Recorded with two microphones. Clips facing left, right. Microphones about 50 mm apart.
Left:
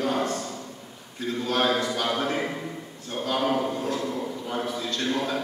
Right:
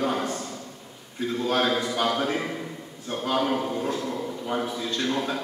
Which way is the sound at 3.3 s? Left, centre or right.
Centre.